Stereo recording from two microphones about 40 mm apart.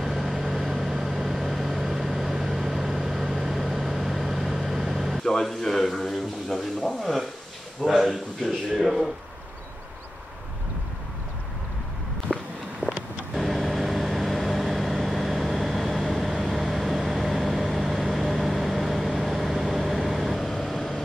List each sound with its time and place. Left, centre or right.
0.0 s vehicle: centre
5.4 s a sound: centre
7.8 s speech: centre
12.3 s walk: left
13.3 s vehicle: centre